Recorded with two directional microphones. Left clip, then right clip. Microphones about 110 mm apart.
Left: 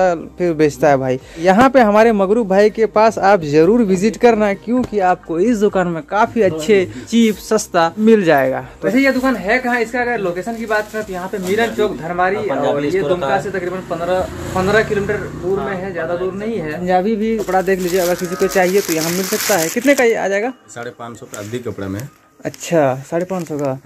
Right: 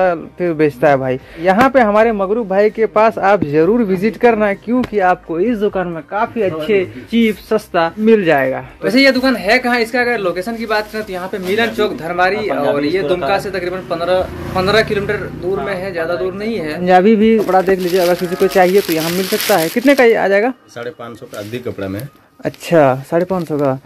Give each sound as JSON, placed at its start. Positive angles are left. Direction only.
{"t": 0.0, "sound": "speech", "side_deg": 20}
{"t": 1.4, "sound": "speech", "side_deg": 35}
{"t": 2.1, "sound": "speech", "side_deg": 75}
{"t": 2.4, "sound": "speech", "side_deg": 50}
{"t": 2.8, "sound": "speech", "side_deg": 25}
{"t": 4.6, "sound": "speech", "side_deg": 10}
{"t": 5.5, "sound": "speech", "side_deg": 65}
{"t": 7.1, "sound": "speech", "side_deg": 25}
{"t": 16.9, "sound": "speech", "side_deg": -70}
{"t": 17.5, "sound": "speech", "side_deg": -5}
{"t": 22.4, "sound": "speech", "side_deg": -25}